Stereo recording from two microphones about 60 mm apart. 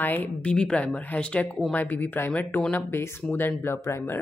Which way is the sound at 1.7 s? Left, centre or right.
Left.